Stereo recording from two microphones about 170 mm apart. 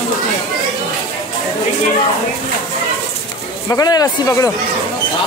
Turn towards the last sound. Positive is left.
turn(degrees=20)  # may be behind; listen again after turning